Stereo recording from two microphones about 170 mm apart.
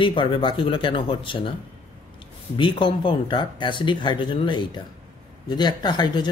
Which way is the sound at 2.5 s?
30° left (ahead or behind).